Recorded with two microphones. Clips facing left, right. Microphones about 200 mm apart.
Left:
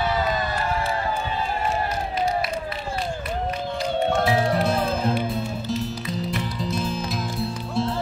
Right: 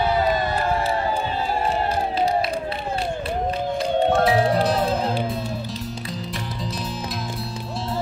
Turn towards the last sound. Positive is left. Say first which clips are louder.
# left 3 dB
turn(degrees=0)  # may be behind; listen again after turning